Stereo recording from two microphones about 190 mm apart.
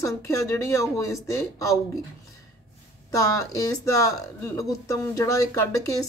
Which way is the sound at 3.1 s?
15° left (ahead or behind).